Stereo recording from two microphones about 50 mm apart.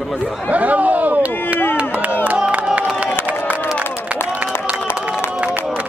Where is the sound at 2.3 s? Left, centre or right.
Right.